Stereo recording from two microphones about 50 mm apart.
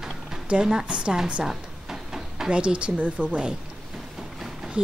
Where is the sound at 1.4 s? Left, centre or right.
Centre.